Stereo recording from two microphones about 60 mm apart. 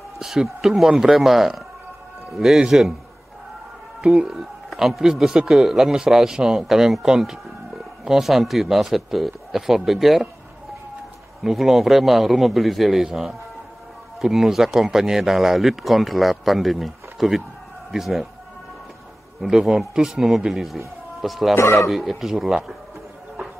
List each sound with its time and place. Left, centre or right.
0.2 s speech: centre
4.0 s speech: centre
11.4 s speech: centre
19.4 s speech: centre
21.5 s speech: left
21.8 s speech: centre